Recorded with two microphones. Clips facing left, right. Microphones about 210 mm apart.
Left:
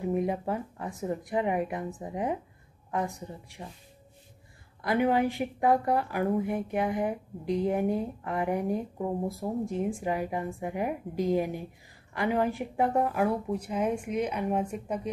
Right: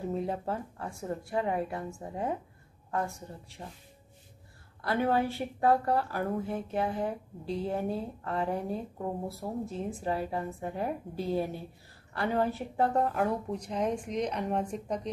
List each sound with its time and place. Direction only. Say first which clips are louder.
0.1 s a woman's voice: left 5 dB; 15° left (ahead or behind)
4.8 s a woman's voice: left 3 dB; 15° left (ahead or behind)